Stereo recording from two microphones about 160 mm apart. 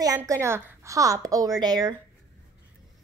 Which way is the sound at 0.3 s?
15° right (ahead or behind).